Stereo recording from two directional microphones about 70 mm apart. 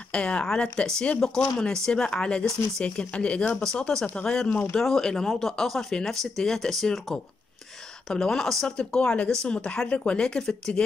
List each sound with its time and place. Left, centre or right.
0.1 s speech: centre
4.5 s speech: left
4.7 s speech: centre